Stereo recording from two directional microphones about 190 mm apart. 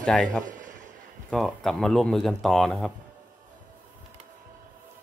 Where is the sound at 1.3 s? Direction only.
Centre (ahead or behind).